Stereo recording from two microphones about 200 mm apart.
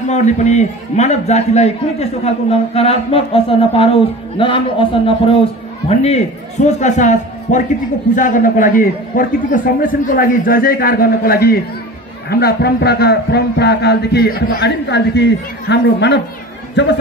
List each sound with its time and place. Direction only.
0.1 s a man's voice: 35° left (ahead or behind); by 16.9 s 60° left (ahead or behind)